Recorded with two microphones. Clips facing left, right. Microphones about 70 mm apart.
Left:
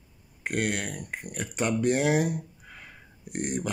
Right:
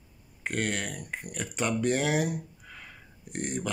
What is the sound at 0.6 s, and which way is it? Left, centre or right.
Speech, centre.